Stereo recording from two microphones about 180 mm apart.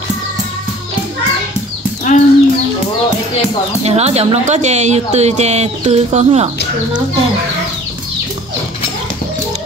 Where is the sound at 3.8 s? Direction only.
35° right (ahead or behind).